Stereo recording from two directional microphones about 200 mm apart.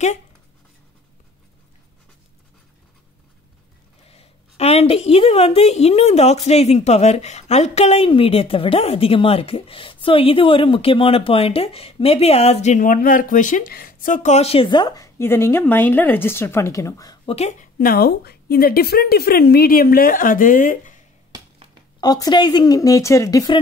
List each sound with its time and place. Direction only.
4.1 s a woman's voice: 30° left (ahead or behind)
17.4 s a woman's voice: 35° left (ahead or behind)
22.0 s a woman's voice: 20° left (ahead or behind)